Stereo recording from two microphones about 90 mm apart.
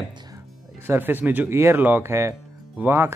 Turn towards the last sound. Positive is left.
turn(degrees=-25)  # may be behind; listen again after turning